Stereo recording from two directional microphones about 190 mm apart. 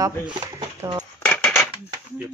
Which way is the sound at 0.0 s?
20° right (ahead or behind).